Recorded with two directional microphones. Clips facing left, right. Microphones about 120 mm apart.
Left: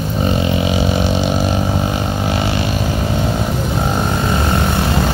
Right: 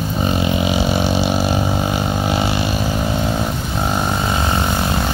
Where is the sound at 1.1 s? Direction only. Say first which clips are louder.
Left 1 dB; 5° right (ahead or behind).